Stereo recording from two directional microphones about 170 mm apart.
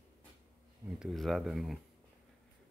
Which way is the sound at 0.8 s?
5° right (ahead or behind).